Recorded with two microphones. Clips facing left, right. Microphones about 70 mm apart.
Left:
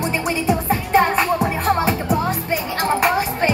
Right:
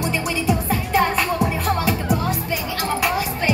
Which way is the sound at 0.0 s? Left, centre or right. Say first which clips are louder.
Left 2 dB; left.